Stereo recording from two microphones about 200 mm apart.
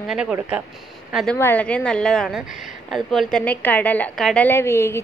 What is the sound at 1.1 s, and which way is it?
A woman's voice, 5° left (ahead or behind).